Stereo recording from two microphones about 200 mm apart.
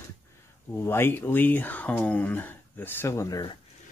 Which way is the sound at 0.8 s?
10° left (ahead or behind).